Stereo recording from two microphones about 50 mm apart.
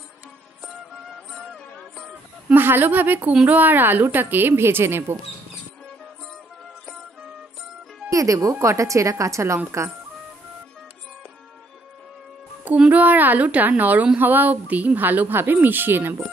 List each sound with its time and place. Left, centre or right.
2.5 s a woman's voice: right
8.1 s a woman's voice: right
12.6 s speech: right
12.9 s speech: right